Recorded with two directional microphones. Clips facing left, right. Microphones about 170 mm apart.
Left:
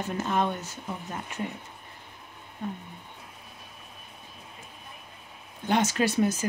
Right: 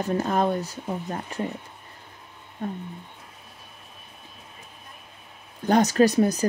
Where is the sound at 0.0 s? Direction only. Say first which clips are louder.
Right 4 dB; 40° right (ahead or behind).